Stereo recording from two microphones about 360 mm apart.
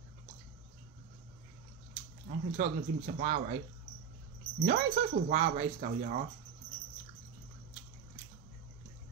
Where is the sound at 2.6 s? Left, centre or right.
Right.